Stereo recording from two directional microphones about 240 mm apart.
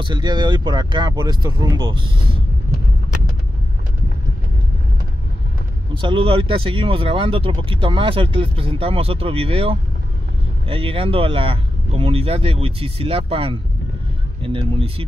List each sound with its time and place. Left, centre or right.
0.0 s speech: centre
5.9 s speech: right